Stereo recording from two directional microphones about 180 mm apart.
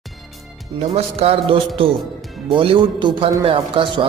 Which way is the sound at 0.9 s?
30° right (ahead or behind).